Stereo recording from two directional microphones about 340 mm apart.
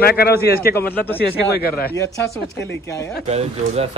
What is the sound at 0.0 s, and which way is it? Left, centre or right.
Speech, left.